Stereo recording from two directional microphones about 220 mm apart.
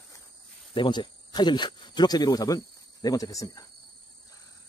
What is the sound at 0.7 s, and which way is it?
Speech, 20° left (ahead or behind).